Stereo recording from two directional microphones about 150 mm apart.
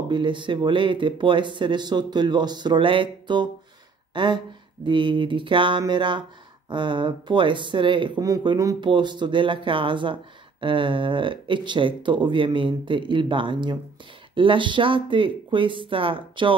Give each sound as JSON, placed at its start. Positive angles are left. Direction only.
{"t": 0.1, "sound": "speech", "side_deg": -30}